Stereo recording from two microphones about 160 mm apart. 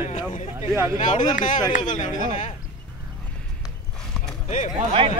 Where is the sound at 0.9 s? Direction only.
50° left (ahead or behind).